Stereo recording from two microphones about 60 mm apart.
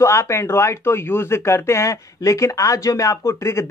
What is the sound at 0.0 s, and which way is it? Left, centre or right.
Speech, left.